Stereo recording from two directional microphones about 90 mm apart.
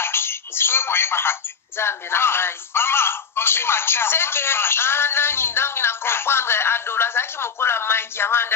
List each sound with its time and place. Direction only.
0.0 s telephone: 25° left (ahead or behind)
1.8 s speech: 25° left (ahead or behind)